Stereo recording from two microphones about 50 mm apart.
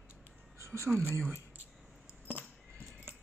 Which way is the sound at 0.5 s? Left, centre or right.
Right.